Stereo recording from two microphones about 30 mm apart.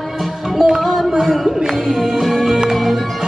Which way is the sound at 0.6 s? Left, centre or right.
Centre.